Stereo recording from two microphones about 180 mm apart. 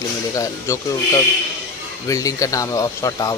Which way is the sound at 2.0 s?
20° left (ahead or behind).